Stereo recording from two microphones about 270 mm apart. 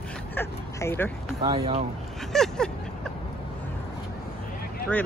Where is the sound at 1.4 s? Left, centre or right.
Right.